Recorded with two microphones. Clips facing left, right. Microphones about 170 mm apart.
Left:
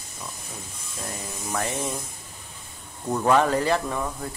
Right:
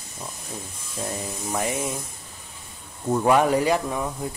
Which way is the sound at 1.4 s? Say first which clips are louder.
Right 1 dB; 15° right (ahead or behind).